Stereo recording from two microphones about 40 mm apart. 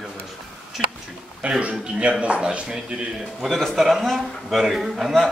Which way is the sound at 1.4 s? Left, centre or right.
Right.